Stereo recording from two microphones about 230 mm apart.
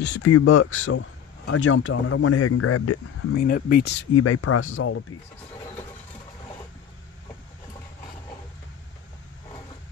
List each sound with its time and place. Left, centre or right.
0.0 s speech: left
0.3 s a man's voice: left
3.3 s speech: left
4.2 s a man's voice: left